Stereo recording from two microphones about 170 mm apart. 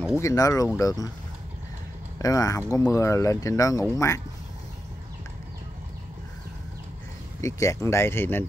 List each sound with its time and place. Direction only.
0.2 s speech: 20° left (ahead or behind)
2.1 s speech: 20° left (ahead or behind)
7.4 s speech: 20° left (ahead or behind)